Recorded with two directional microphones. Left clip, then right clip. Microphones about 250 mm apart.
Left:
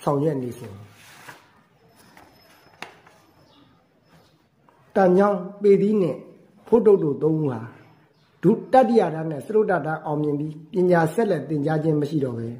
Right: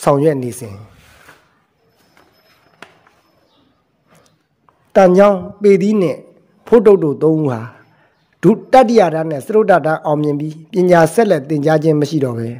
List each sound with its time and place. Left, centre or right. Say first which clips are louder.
0.0 s a man's voice: right 10 dB; right
4.9 s a man's voice: right 9 dB; right